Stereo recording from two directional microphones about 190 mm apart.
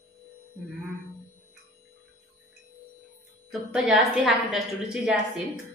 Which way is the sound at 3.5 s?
Centre (ahead or behind).